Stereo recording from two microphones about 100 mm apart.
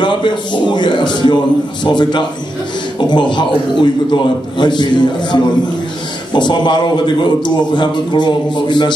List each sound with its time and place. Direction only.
0.0 s a man's voice: 50° left (ahead or behind)